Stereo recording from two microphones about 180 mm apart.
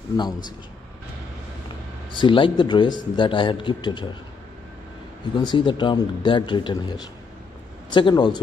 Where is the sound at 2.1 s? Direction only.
25° left (ahead or behind).